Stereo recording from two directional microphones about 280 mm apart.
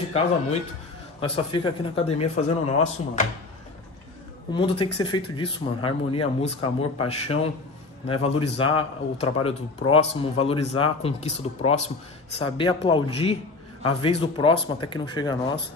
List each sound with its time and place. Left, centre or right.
1.2 s a man's voice: centre
4.5 s a man's voice: centre